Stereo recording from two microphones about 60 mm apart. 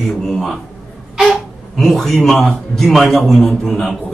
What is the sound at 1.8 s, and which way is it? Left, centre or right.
Speech, centre.